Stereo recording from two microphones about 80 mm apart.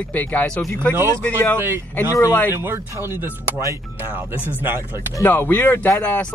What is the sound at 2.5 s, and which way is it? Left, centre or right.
Speech, right.